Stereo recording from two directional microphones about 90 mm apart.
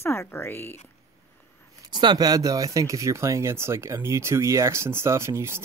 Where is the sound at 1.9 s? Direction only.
55° right (ahead or behind); by 5.6 s 30° right (ahead or behind).